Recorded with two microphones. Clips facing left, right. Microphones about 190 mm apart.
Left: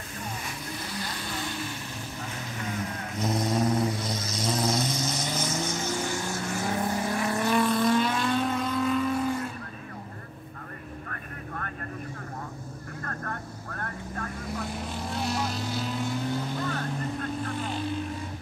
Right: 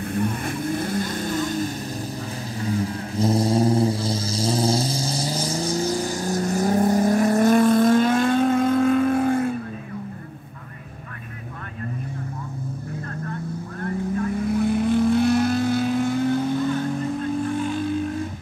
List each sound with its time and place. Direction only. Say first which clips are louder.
0.1 s vehicle: right 12 dB; 55° right (ahead or behind)
2.6 s vehicle: right 9 dB; 30° right (ahead or behind); by 9.5 s 55° right (ahead or behind)
13.3 s vehicle: right 7 dB; 55° left (ahead or behind)
14.5 s vehicle: right 15 dB; 60° right (ahead or behind)
17.5 s vehicle: right 7 dB; 50° right (ahead or behind)